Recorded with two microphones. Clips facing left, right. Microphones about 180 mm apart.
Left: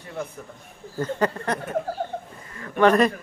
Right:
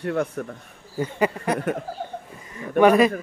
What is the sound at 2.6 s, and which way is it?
Speech, 10° right (ahead or behind).